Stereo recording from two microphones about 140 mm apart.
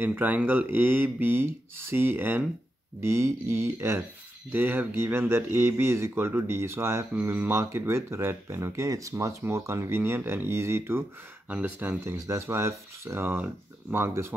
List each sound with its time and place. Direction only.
0.0 s speech: 10° right (ahead or behind)